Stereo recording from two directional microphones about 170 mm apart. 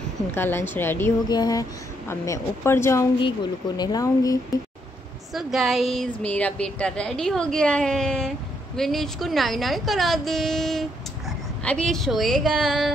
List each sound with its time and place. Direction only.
0.3 s speech: 15° left (ahead or behind)
3.2 s speech: 25° left (ahead or behind)
5.3 s a woman's voice: centre (ahead or behind)